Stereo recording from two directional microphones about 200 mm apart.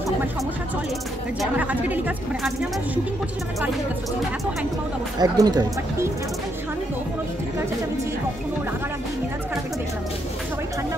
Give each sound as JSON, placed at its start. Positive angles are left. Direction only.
{"t": 1.4, "sound": "a woman's voice", "side_deg": -10}
{"t": 5.2, "sound": "speech", "side_deg": -20}